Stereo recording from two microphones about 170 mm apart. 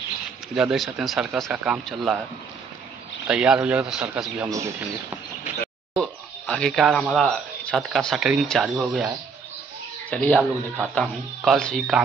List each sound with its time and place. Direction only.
0.6 s speech: centre (ahead or behind)
3.3 s speech: 5° right (ahead or behind)
4.5 s speech: 15° right (ahead or behind)
5.9 s speech: 5° left (ahead or behind)
10.0 s speech: 5° left (ahead or behind)